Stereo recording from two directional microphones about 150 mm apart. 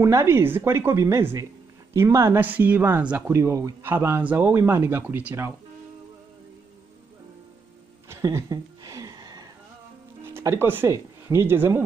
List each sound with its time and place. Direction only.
0.0 s speech: 20° right (ahead or behind)
8.1 s a sound: 20° right (ahead or behind)
10.2 s speech: 15° right (ahead or behind)